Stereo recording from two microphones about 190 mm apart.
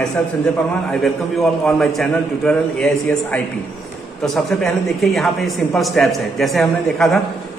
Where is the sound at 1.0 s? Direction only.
Centre (ahead or behind).